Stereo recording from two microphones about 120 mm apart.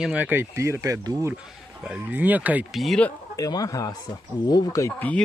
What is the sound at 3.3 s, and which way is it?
Speech, 30° left (ahead or behind).